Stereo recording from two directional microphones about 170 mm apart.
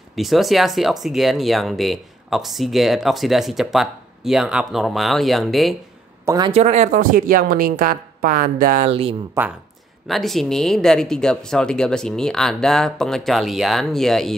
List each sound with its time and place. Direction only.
0.1 s speech: centre (ahead or behind)
6.2 s speech: 20° right (ahead or behind)
6.5 s speech: 40° right (ahead or behind)
8.8 s speech: 35° right (ahead or behind)
9.4 s speech: 15° right (ahead or behind)
10.0 s speech: centre (ahead or behind)